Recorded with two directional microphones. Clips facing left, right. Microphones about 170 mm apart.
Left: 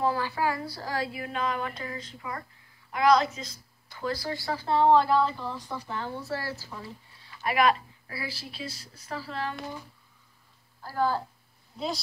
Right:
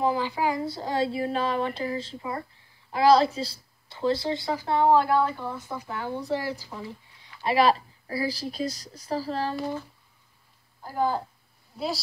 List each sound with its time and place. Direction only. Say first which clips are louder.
0.0 s speech: right 2 dB; 15° right (ahead or behind)
7.5 s a woman's voice: right 3 dB; 35° right (ahead or behind)
10.8 s speech: right 1 dB; 20° right (ahead or behind)
11.7 s a woman's voice: right 2 dB; 5° right (ahead or behind)